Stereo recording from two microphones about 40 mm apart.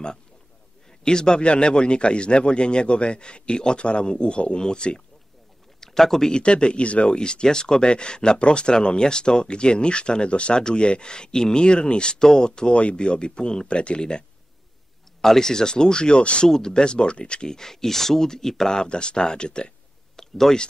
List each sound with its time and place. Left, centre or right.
1.0 s speech: centre
5.8 s a man's voice: centre
6.3 s speech: left
15.2 s speech: centre
16.4 s speech: centre
18.9 s speech: left
20.2 s a sound: centre